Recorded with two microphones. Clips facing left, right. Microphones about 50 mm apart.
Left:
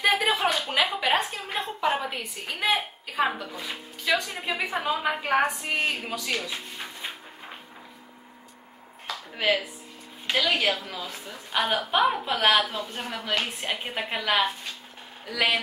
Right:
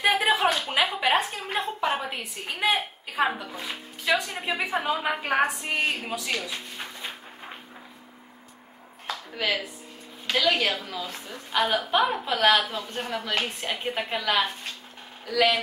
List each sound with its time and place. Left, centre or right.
0.0 s a sound: centre
4.1 s a woman's voice: centre
9.3 s a woman's voice: centre